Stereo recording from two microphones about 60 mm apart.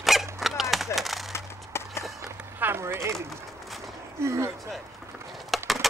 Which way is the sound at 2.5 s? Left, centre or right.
Right.